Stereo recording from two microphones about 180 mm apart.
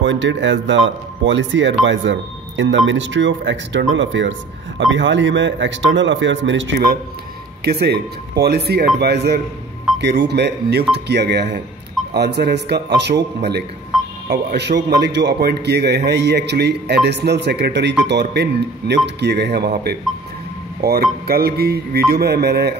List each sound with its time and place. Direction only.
0.0 s speech: 90° right
7.6 s a man's voice: 60° right (ahead or behind)